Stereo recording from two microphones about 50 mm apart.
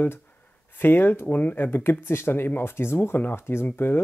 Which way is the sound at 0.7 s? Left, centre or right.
Left.